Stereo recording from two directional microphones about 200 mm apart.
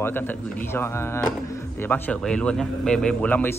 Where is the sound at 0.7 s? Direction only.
10° left (ahead or behind).